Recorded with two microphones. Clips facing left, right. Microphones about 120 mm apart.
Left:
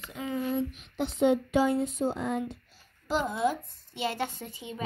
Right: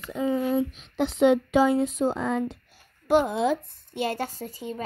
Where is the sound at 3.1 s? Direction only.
60° right (ahead or behind).